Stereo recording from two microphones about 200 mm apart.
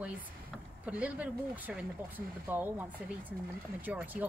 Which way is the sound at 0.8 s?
5° right (ahead or behind).